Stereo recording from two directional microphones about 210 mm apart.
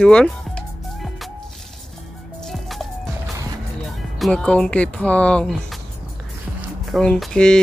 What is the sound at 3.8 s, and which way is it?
Speech, centre (ahead or behind).